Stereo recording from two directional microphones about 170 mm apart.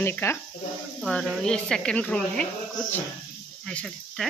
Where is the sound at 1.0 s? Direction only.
Centre (ahead or behind).